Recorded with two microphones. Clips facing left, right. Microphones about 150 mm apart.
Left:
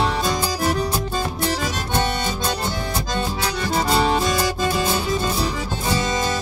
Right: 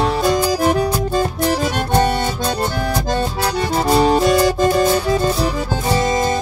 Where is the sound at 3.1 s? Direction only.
40° right (ahead or behind).